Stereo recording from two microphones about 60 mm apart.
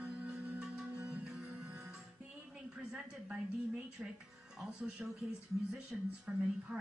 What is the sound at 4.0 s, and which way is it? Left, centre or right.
Speech, centre.